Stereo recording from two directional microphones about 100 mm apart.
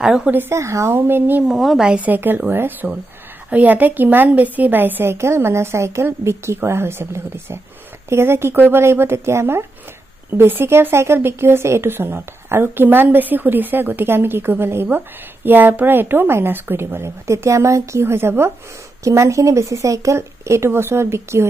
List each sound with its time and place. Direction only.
0.0 s a woman's voice: 5° right (ahead or behind)
0.3 s speech: 25° right (ahead or behind)
1.5 s a woman's voice: centre (ahead or behind); by 21.5 s 25° right (ahead or behind)